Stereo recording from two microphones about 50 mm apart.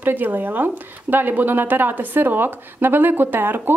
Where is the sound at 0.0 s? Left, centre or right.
Right.